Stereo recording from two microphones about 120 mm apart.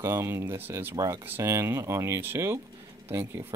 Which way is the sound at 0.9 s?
30° right (ahead or behind).